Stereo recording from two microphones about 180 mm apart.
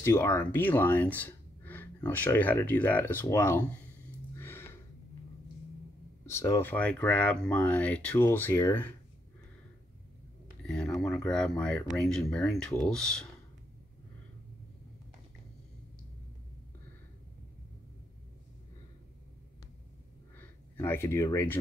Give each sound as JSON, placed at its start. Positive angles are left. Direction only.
{"t": 0.0, "sound": "speech", "side_deg": 15}
{"t": 4.4, "sound": "music", "side_deg": 15}
{"t": 6.2, "sound": "speech", "side_deg": 15}
{"t": 10.6, "sound": "speech", "side_deg": 5}
{"t": 20.3, "sound": "speech", "side_deg": 10}